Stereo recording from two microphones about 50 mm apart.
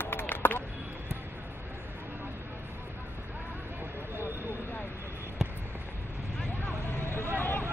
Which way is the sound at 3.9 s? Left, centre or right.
Right.